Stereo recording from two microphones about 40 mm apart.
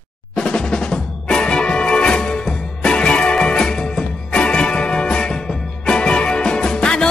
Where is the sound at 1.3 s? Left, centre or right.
Left.